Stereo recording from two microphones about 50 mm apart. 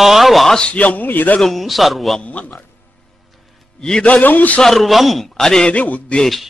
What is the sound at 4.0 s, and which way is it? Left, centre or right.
Speech, left.